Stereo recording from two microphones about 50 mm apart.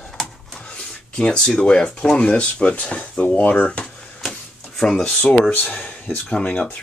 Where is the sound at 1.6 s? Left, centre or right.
Centre.